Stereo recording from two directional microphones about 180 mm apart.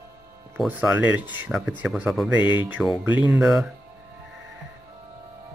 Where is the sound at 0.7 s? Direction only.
10° right (ahead or behind).